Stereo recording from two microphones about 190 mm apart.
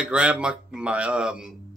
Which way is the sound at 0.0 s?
5° right (ahead or behind).